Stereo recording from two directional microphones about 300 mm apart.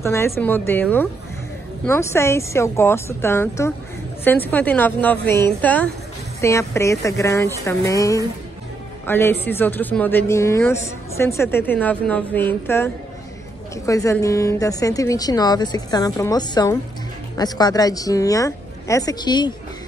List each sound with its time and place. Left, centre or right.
0.0 s a man's voice: centre